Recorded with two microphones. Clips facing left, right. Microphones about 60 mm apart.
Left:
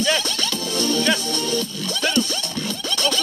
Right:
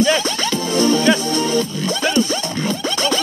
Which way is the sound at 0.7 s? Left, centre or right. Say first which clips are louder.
Right 6 dB; centre.